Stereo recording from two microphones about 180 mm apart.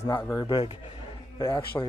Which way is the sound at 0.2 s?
20° left (ahead or behind).